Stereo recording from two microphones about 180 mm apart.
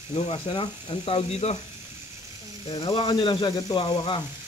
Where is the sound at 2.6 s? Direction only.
25° left (ahead or behind).